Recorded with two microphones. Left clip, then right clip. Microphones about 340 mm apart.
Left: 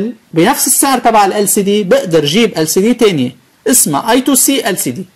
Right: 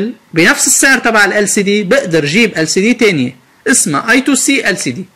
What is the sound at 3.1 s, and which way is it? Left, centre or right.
Speech, centre.